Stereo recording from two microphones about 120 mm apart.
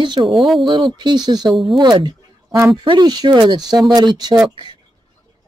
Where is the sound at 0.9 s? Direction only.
35° right (ahead or behind).